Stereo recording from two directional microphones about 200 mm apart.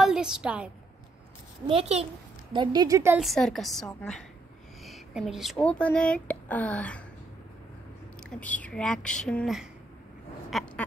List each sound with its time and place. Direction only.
0.0 s a woman's voice: 5° right (ahead or behind)
1.7 s a child's voice: 30° right (ahead or behind); by 3.2 s 15° right (ahead or behind)
3.2 s speech: centre (ahead or behind)
8.3 s speech: 5° left (ahead or behind)